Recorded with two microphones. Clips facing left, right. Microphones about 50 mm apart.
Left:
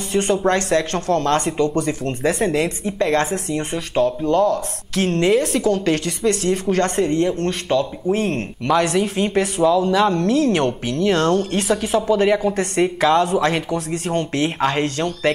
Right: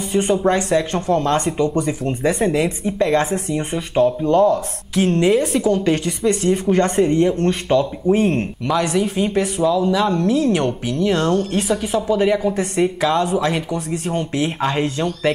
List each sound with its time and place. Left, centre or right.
0.1 s speech: centre
4.0 s speech: right
4.9 s speech: centre
8.6 s speech: centre